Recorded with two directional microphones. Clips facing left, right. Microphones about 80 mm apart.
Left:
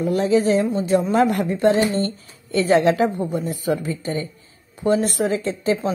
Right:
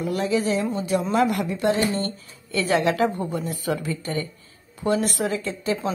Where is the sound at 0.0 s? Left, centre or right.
Left.